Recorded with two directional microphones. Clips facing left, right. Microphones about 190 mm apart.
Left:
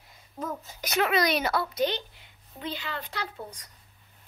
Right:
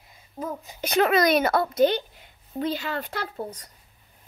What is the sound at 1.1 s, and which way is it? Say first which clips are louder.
A woman's voice: right 5 dB; 50° right (ahead or behind).